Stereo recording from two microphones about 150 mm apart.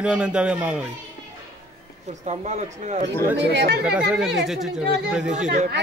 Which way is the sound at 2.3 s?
50° right (ahead or behind).